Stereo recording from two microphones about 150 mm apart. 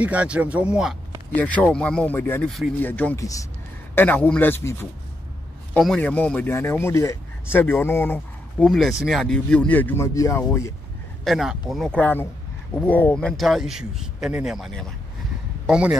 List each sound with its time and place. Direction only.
0.0 s speech: 10° right (ahead or behind)
1.3 s a man's voice: 10° left (ahead or behind)
2.4 s speech: centre (ahead or behind)
2.8 s a man's voice: 10° left (ahead or behind)
8.6 s a man's voice: centre (ahead or behind); by 10.4 s 20° left (ahead or behind)
11.2 s speech: centre (ahead or behind)